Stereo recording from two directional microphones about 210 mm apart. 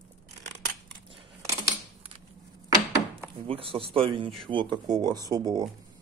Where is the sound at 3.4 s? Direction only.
25° right (ahead or behind).